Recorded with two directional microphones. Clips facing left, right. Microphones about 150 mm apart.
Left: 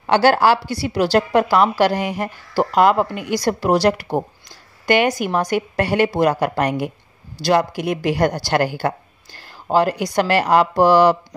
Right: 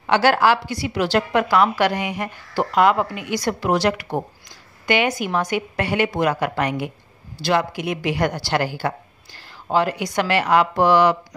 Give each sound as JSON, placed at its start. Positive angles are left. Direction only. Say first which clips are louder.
{"t": 0.0, "sound": "a woman's voice", "louder": "left 2 dB", "side_deg": 35}